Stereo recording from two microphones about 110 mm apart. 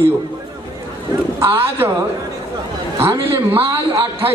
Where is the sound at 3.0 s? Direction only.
25° right (ahead or behind).